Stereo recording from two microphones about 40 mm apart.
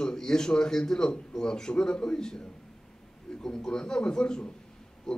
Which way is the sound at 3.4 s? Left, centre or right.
Centre.